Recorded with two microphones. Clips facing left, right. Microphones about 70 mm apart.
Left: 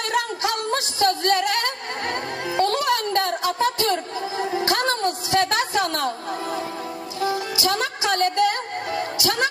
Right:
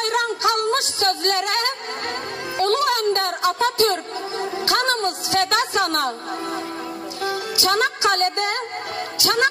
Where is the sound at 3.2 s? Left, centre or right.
Right.